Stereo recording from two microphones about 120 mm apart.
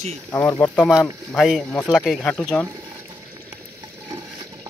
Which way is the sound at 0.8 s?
Centre (ahead or behind).